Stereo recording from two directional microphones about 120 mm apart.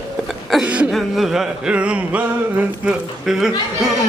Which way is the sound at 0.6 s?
10° right (ahead or behind).